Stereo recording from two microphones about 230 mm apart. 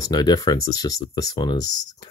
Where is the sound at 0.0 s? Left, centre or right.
Centre.